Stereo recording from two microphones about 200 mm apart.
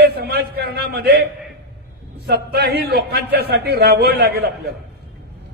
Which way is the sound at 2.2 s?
55° right (ahead or behind).